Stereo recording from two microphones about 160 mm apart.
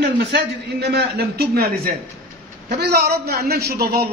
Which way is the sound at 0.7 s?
90° right.